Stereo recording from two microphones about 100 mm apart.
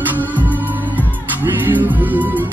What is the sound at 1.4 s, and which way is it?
Music, 20° right (ahead or behind).